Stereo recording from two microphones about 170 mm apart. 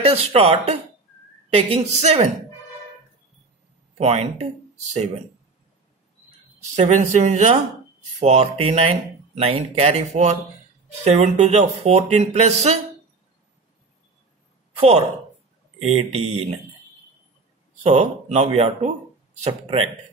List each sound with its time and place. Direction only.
0.0 s speech: 35° right (ahead or behind)
4.0 s speech: 35° right (ahead or behind)
6.7 s speech: 45° right (ahead or behind)
14.8 s a woman's voice: 40° right (ahead or behind)
17.8 s speech: 40° right (ahead or behind)